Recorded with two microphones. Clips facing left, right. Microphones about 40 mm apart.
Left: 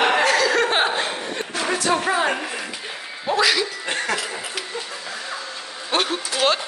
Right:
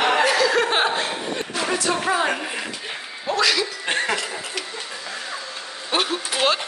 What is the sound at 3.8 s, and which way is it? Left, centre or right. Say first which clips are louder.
Chuckle: right 2 dB; right.